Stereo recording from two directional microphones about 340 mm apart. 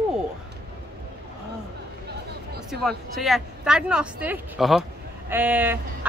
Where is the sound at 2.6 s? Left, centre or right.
Centre.